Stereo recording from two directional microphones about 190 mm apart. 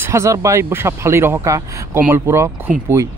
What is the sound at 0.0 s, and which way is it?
Speech, 15° right (ahead or behind).